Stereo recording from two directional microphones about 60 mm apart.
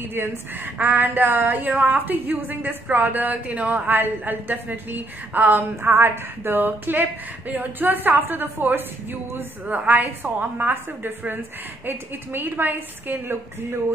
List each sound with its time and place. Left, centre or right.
0.1 s a woman's voice: right